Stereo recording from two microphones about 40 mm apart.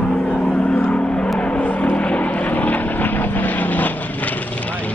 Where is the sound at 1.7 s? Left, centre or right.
Left.